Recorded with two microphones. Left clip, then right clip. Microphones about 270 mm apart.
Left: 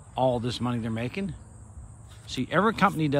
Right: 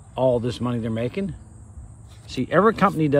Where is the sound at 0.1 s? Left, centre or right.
Centre.